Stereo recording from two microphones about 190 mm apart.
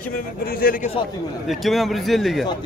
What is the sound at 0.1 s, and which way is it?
Speech, 50° left (ahead or behind).